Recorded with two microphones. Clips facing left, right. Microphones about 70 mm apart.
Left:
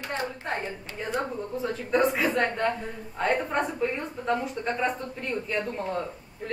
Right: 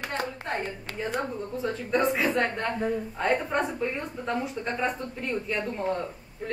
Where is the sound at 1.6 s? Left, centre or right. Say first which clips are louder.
Left 1 dB; centre.